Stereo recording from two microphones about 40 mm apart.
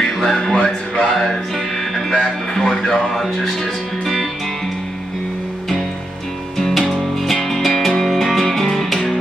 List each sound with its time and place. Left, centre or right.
0.0 s music: centre
2.0 s speech: centre
4.0 s music: centre
7.3 s music: centre